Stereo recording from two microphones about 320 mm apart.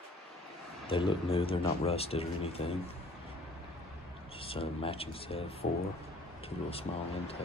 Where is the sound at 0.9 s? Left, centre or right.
Centre.